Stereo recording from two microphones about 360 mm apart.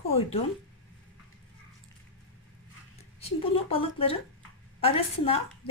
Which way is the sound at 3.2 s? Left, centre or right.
Centre.